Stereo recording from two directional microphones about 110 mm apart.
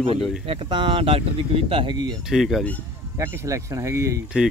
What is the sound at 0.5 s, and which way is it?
Speech, 50° right (ahead or behind).